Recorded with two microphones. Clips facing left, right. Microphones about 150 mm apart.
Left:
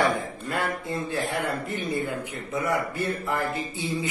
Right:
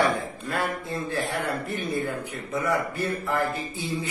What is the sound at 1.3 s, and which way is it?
Speech, 20° left (ahead or behind).